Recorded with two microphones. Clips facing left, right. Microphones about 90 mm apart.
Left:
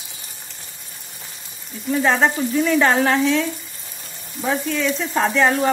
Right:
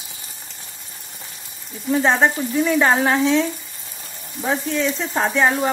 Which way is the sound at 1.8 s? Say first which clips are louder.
Right 1 dB; 25° right (ahead or behind).